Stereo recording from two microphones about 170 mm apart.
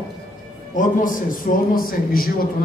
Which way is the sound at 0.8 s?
50° left (ahead or behind).